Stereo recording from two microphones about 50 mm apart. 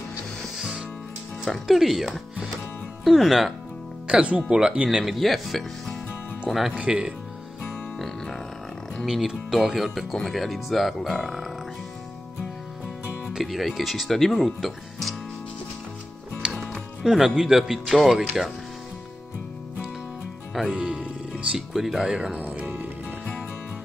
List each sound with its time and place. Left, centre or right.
0.6 s music: centre
1.4 s speech: centre
4.1 s speech: right
5.0 s speech: centre
6.7 s speech: right
9.0 s speech: centre
11.0 s speech: centre
13.4 s speech: centre
16.4 s music: centre
17.0 s speech: centre
20.6 s speech: centre
21.5 s speech: centre
22.4 s music: right